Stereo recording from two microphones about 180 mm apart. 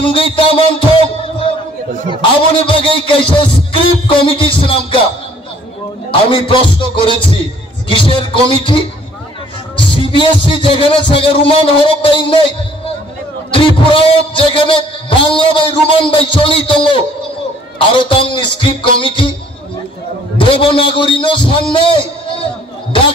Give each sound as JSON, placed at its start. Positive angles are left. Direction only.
{"t": 0.0, "sound": "a man's voice", "side_deg": 30}
{"t": 2.6, "sound": "a man's voice", "side_deg": 30}
{"t": 6.3, "sound": "a man's voice", "side_deg": 30}
{"t": 13.5, "sound": "a man's voice", "side_deg": 30}
{"t": 20.3, "sound": "a man's voice", "side_deg": 30}